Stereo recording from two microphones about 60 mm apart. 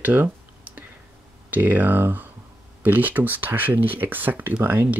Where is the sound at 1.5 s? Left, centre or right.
Right.